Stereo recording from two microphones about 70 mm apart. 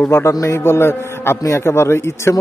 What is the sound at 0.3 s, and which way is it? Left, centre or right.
A man's voice, left.